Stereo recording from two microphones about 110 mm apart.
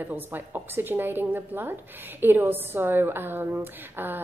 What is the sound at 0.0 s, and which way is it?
A woman's voice, 20° right (ahead or behind).